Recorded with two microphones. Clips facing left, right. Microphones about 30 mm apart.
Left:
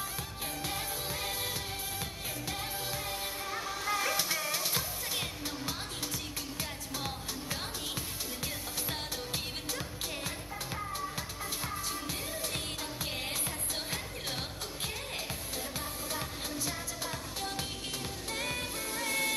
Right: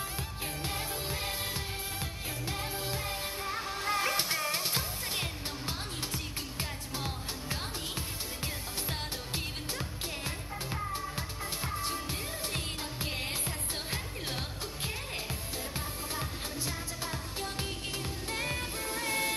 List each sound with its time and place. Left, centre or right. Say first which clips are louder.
0.7 s music: right 1 dB; right
11.8 s music: right 2 dB; right
18.3 s music: right 1 dB; right